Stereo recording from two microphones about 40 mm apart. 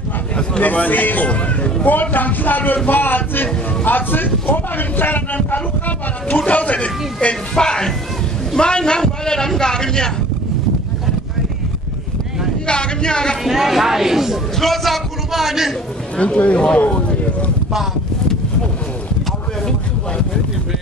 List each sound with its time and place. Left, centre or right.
0.6 s a man's voice: left
6.2 s speech: left
7.5 s a man's voice: centre
12.6 s a man's voice: left
13.4 s speech: centre
14.6 s a man's voice: centre
16.2 s speech: left
16.7 s a sound: left